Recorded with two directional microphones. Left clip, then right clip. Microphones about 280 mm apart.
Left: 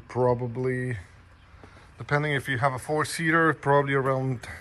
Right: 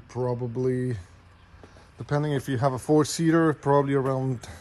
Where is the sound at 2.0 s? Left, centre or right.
Centre.